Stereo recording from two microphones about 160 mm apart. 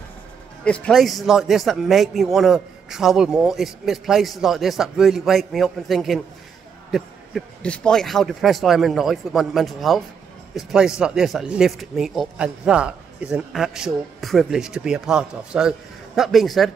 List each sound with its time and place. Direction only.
0.7 s a man's voice: 5° left (ahead or behind)